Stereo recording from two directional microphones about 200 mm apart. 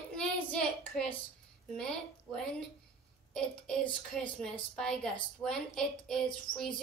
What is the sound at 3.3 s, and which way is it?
A woman's voice, 5° left (ahead or behind).